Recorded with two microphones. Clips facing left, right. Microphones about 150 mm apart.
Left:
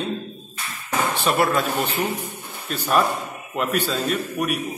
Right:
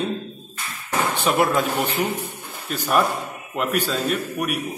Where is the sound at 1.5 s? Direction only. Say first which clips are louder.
Right 1 dB; 10° right (ahead or behind).